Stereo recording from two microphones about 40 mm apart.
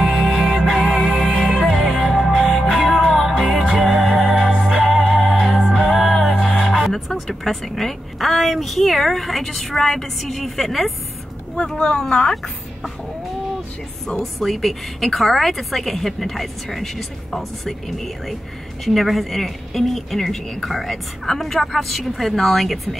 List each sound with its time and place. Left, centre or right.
0.0 s music: centre
7.2 s a woman's voice: centre
11.5 s speech: centre
14.0 s a woman's voice: centre
14.4 s a woman's voice: centre